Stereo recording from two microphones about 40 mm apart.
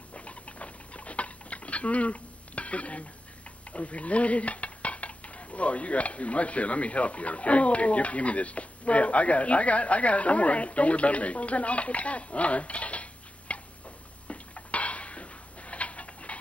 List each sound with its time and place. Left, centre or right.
0.1 s rodents: left
3.7 s cutlery: left
14.2 s dishes: left